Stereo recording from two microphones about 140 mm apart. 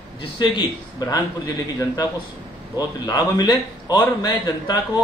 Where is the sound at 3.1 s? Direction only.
30° left (ahead or behind).